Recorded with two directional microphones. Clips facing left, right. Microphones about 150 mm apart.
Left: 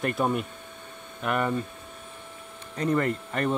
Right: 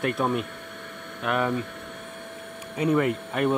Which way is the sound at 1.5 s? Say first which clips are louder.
Right 1 dB; 75° right (ahead or behind).